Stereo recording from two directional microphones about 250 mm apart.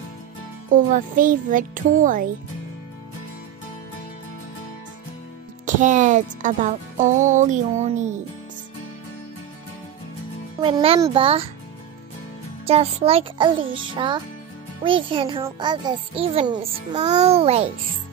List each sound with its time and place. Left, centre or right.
0.7 s a child's voice: right
5.8 s a child's voice: right
10.6 s a child's voice: right
12.6 s a child's voice: right